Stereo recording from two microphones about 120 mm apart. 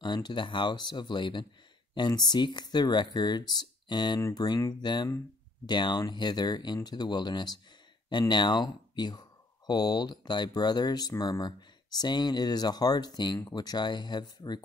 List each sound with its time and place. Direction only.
0.0 s speech: 40° left (ahead or behind)